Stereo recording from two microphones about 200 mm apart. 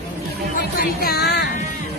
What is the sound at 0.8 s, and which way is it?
Music, 50° left (ahead or behind).